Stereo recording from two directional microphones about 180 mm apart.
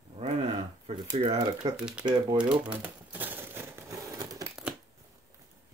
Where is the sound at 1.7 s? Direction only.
5° right (ahead or behind).